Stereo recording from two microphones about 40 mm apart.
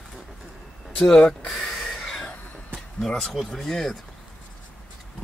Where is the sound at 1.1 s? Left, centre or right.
Left.